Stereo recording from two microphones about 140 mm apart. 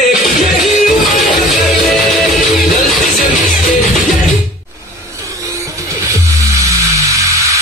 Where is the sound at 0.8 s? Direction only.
Centre (ahead or behind).